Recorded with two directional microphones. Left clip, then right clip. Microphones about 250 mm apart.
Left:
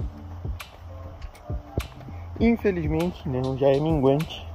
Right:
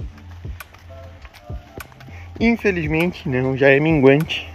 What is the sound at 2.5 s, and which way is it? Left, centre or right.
Speech, right.